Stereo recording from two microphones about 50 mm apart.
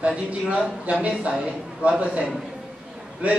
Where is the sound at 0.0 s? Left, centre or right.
Right.